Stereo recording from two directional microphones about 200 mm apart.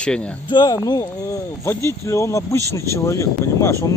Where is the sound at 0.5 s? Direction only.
20° left (ahead or behind).